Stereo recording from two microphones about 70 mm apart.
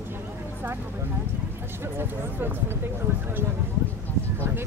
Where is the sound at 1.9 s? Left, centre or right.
Right.